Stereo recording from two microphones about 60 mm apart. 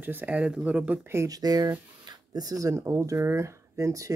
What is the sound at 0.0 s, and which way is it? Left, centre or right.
Speech, right.